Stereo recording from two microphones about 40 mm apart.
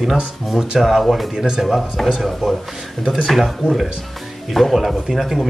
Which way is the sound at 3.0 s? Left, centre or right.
Centre.